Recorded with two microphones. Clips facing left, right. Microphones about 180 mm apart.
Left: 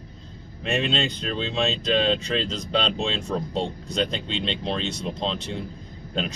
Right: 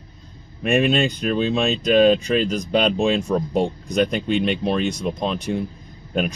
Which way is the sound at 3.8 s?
15° right (ahead or behind).